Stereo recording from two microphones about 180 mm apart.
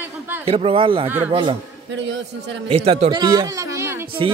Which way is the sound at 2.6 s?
35° right (ahead or behind).